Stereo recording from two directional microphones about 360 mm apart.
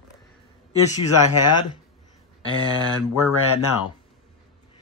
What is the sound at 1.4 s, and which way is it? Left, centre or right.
Speech, left.